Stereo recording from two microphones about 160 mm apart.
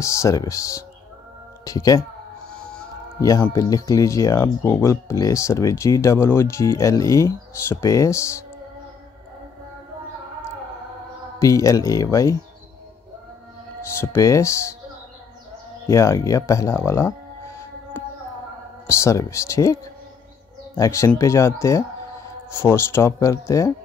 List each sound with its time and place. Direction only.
0.0 s speech: 20° left (ahead or behind)
3.2 s speech: 20° left (ahead or behind)
11.3 s speech: 20° left (ahead or behind)
13.9 s speech: 15° left (ahead or behind)
15.9 s speech: 20° left (ahead or behind)
18.9 s speech: 20° left (ahead or behind)